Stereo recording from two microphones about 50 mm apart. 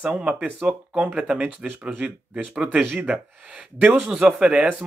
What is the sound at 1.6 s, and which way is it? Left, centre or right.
Speech, centre.